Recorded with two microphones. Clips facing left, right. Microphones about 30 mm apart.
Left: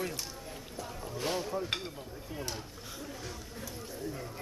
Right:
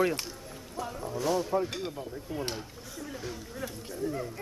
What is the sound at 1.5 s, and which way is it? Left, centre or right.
Speech, right.